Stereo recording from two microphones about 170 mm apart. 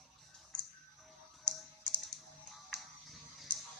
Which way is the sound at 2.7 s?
Centre (ahead or behind).